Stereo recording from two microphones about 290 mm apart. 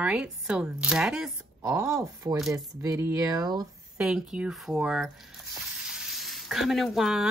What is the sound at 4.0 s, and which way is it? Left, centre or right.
Speech, centre.